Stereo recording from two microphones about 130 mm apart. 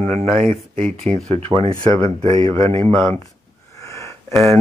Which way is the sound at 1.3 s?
55° right (ahead or behind).